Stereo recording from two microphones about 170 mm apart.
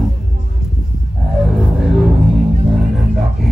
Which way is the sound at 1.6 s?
5° right (ahead or behind).